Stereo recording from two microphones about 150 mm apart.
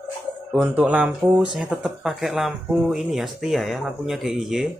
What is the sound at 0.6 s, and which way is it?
Speech, 10° right (ahead or behind).